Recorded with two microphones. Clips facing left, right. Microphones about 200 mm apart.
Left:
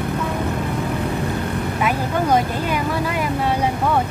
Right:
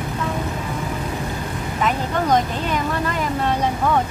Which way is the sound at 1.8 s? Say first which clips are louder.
Right 1 dB; 10° left (ahead or behind).